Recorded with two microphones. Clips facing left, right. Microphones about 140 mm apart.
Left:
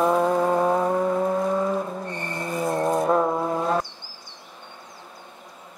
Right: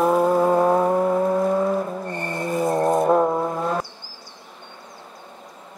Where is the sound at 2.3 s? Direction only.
Centre (ahead or behind).